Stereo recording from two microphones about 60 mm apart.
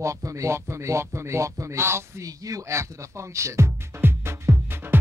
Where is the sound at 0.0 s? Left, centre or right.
Right.